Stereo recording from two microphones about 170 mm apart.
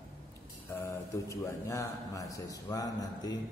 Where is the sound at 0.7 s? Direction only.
15° left (ahead or behind).